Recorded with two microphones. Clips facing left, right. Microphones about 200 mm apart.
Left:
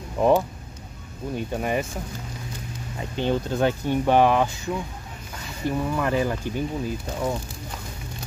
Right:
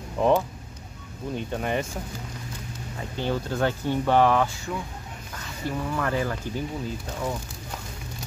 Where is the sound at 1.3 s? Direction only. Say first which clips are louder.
Left 2 dB; 5° left (ahead or behind).